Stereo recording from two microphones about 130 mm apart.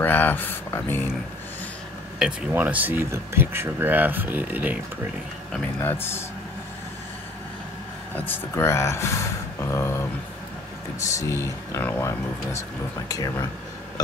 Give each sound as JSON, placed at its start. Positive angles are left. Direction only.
{"t": 0.0, "sound": "speech", "side_deg": 15}
{"t": 2.1, "sound": "speech", "side_deg": -5}
{"t": 5.8, "sound": "a man's voice", "side_deg": 20}
{"t": 8.2, "sound": "speech", "side_deg": 15}
{"t": 11.1, "sound": "speech", "side_deg": 25}